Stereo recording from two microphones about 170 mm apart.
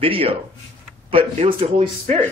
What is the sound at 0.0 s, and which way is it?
Speech, 30° right (ahead or behind).